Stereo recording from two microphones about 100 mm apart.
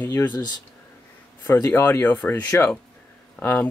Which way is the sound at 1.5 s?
25° left (ahead or behind).